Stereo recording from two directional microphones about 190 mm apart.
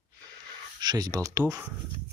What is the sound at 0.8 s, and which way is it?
Speech, 20° right (ahead or behind).